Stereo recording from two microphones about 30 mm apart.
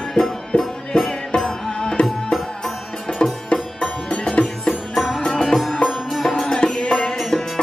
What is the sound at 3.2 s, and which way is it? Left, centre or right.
Music, left.